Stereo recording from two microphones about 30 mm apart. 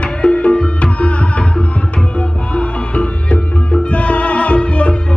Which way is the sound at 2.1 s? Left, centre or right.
Left.